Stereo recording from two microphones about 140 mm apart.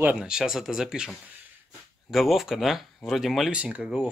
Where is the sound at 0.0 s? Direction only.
5° right (ahead or behind).